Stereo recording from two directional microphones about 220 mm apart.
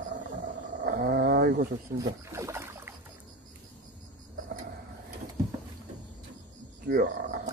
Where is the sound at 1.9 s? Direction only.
15° right (ahead or behind).